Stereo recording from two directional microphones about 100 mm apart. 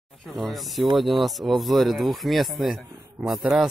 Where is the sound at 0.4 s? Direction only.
Centre (ahead or behind).